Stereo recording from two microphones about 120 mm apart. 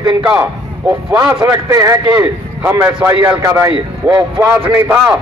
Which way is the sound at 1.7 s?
25° right (ahead or behind).